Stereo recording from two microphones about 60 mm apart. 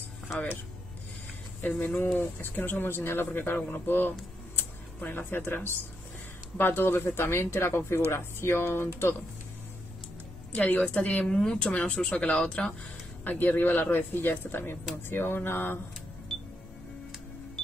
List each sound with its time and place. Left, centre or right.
2.1 s speech: left
10.5 s a woman's voice: left
13.2 s speech: left
16.3 s music: centre